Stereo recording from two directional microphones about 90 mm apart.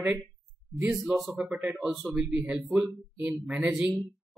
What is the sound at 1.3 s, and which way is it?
Speech, 15° right (ahead or behind).